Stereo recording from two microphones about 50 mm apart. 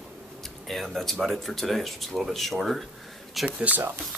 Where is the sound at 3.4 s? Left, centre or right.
Right.